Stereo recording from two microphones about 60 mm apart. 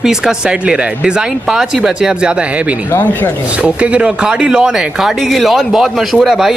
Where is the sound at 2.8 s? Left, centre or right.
Left.